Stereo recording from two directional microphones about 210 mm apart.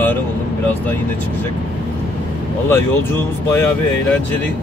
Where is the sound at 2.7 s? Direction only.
10° left (ahead or behind).